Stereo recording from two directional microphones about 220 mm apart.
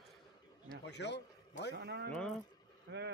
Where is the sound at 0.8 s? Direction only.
50° left (ahead or behind).